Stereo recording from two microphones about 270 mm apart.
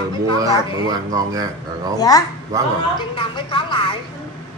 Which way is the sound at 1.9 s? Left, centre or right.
Centre.